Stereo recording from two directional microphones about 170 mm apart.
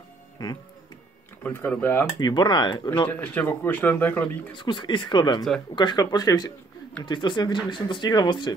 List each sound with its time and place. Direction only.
1.4 s speech: 10° left (ahead or behind)
2.1 s speech: 25° left (ahead or behind)
3.1 s speech: 10° left (ahead or behind)
4.6 s speech: 30° left (ahead or behind)